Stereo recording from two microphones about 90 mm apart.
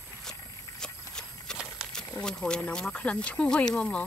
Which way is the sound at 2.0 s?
10° left (ahead or behind).